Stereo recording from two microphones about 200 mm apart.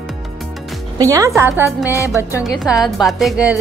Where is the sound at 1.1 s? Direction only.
15° right (ahead or behind).